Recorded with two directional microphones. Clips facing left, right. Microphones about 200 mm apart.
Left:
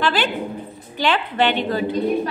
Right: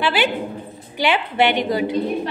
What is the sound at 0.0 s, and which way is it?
A woman's voice, 10° right (ahead or behind).